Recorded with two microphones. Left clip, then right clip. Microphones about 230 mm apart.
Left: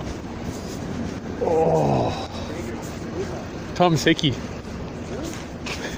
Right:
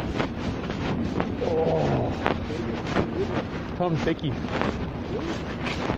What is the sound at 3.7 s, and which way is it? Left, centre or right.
Speech, left.